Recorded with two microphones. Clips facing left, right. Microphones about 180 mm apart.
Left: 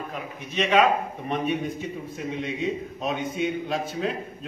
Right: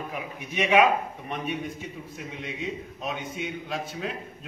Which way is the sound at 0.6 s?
15° right (ahead or behind).